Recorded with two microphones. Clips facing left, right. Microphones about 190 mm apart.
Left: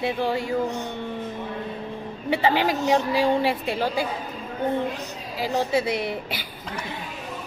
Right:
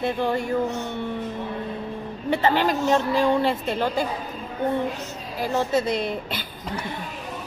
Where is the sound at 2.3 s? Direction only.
15° left (ahead or behind).